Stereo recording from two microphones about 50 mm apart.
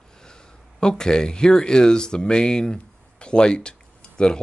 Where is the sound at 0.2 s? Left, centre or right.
Centre.